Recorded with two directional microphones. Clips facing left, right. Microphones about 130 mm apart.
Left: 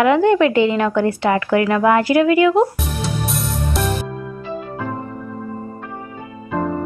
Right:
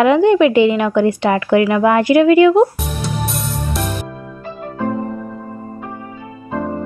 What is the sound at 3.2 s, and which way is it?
Music, centre (ahead or behind).